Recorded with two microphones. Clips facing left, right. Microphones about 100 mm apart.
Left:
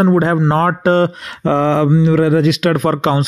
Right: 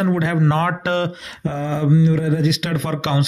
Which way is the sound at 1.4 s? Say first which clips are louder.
Left 9 dB; 75° left (ahead or behind).